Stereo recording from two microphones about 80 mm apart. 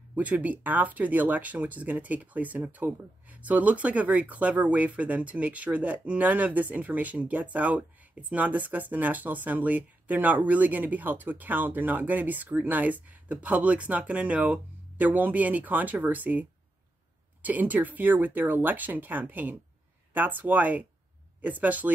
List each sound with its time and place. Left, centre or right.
0.1 s speech: centre